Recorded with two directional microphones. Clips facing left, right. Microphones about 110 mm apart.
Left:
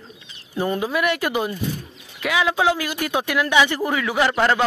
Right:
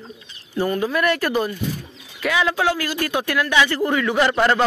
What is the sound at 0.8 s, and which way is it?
Speech, 15° left (ahead or behind).